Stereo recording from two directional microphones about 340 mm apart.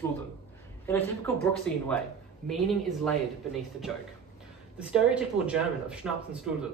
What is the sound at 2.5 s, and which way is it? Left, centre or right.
Speech, centre.